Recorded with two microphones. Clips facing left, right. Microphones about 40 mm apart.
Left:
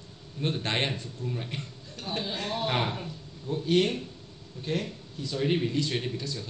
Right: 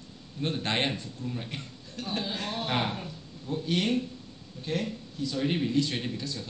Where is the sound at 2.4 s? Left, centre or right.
Centre.